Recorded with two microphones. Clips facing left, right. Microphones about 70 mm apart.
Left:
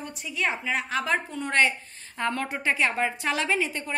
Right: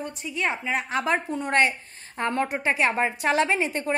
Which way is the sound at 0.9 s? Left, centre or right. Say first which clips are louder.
Right 3 dB; right.